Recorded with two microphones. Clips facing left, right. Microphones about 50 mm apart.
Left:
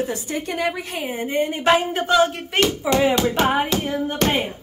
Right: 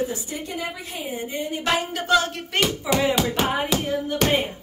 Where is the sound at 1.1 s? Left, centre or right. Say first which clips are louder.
Left 7 dB; left.